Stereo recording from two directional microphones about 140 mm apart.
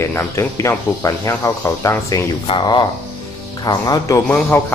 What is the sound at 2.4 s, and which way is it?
Speech, 40° left (ahead or behind).